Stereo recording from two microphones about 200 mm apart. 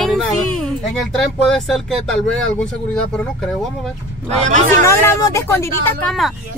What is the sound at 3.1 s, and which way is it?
Speech, centre (ahead or behind).